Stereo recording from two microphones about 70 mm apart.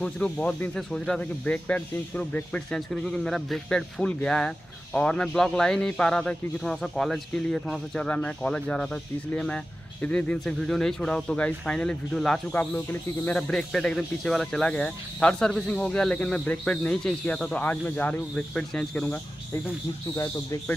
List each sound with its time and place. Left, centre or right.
0.0 s a man's voice: centre
1.4 s a man's voice: centre
10.4 s speech: centre
12.1 s a man's voice: centre
12.5 s speech: left
13.4 s speech: centre
17.6 s speech: left
18.3 s speech: centre